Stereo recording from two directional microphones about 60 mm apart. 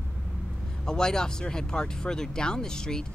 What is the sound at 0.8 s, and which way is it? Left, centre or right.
Speech, centre.